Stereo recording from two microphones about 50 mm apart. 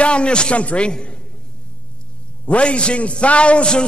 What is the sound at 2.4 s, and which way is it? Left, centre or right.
A man's voice, left.